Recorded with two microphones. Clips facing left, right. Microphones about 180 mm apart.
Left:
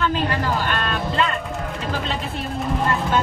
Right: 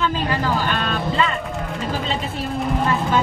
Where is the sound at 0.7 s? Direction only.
Centre (ahead or behind).